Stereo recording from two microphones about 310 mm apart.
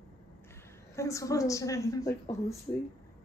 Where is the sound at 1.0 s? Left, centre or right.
Centre.